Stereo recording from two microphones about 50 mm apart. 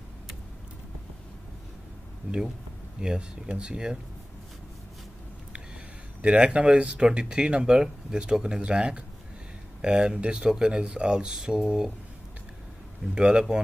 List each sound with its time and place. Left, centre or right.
2.3 s speech: right
3.0 s speech: centre
6.2 s speech: right
13.1 s speech: centre